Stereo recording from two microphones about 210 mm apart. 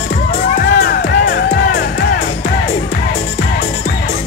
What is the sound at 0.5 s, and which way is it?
Music, 45° left (ahead or behind).